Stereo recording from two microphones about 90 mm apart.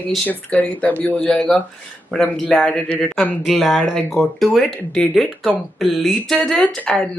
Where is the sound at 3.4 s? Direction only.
Centre (ahead or behind).